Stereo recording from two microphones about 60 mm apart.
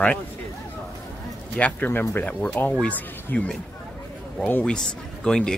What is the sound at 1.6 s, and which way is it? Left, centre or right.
Speech, left.